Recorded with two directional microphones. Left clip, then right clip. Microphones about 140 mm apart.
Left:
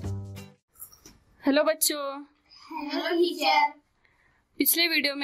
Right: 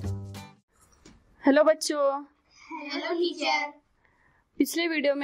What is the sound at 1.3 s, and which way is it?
Speech, 30° right (ahead or behind).